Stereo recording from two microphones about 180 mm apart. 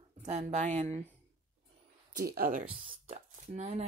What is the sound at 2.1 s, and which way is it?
Speech, 55° right (ahead or behind).